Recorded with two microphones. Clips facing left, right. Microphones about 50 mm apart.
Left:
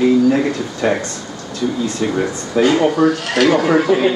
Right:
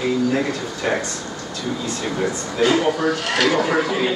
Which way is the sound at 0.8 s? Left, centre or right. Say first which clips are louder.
Left 5 dB; centre.